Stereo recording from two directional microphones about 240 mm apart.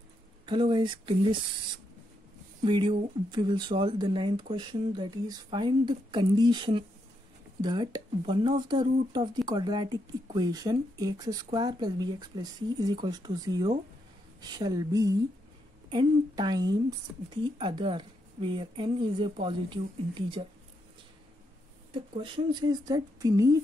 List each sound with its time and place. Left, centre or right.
0.5 s speech: centre
2.6 s speech: centre
21.9 s speech: centre